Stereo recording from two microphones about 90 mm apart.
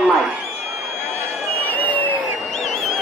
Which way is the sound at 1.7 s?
20° left (ahead or behind).